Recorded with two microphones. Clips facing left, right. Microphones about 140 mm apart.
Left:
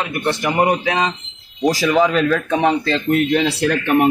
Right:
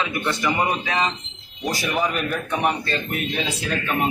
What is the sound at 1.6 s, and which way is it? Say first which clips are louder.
A man's voice: left 9 dB; 90° left.